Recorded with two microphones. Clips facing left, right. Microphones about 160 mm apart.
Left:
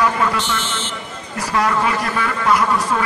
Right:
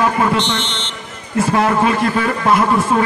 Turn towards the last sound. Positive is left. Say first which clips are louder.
# right 4 dB
turn(degrees=-25)  # may be behind; listen again after turning